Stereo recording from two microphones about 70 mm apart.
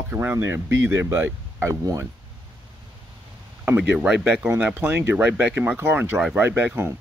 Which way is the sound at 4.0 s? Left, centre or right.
Centre.